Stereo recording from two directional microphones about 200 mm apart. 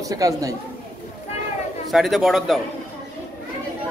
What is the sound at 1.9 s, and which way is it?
Speech, centre (ahead or behind).